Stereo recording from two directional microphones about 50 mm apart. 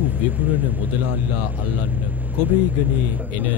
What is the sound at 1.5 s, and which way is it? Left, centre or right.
A man's voice, right.